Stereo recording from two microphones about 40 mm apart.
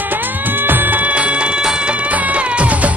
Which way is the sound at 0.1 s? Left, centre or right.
Right.